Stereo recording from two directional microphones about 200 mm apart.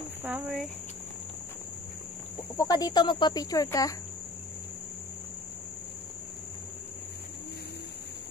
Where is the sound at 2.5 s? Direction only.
15° left (ahead or behind).